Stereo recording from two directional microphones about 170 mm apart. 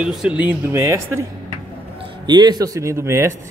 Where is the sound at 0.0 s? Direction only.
5° right (ahead or behind).